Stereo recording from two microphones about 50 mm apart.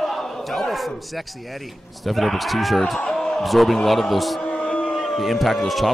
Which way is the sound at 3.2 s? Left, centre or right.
Centre.